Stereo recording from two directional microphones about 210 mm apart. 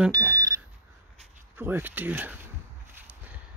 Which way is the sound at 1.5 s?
10° right (ahead or behind).